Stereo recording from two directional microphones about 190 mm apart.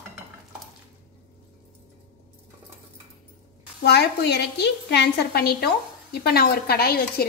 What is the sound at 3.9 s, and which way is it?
A woman's voice, 60° left (ahead or behind).